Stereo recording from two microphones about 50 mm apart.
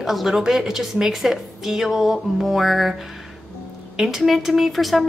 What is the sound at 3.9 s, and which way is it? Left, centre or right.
A woman's voice, centre.